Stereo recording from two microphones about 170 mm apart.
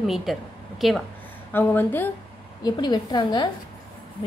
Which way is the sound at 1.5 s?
10° left (ahead or behind).